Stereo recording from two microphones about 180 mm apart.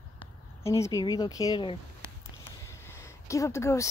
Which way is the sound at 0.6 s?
15° left (ahead or behind).